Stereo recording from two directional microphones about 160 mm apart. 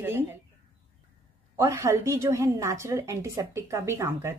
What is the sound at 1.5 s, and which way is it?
A woman's voice, 15° right (ahead or behind).